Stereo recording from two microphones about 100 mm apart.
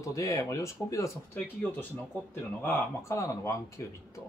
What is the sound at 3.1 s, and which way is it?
Speech, 30° left (ahead or behind).